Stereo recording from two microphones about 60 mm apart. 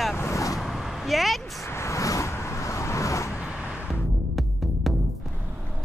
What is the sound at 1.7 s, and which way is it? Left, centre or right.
Vehicle, left.